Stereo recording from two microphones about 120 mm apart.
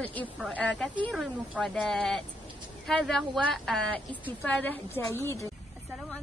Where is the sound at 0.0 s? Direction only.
15° left (ahead or behind).